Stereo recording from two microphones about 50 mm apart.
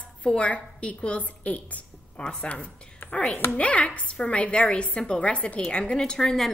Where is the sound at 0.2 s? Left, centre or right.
Left.